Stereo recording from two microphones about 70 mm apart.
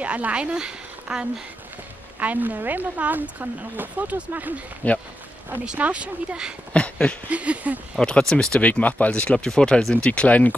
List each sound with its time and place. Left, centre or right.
0.0 s a woman's voice: centre
2.1 s speech: right
4.8 s speech: left
5.8 s speech: centre
6.7 s a sound: centre
7.2 s speech: centre
8.0 s speech: centre
8.5 s speech: left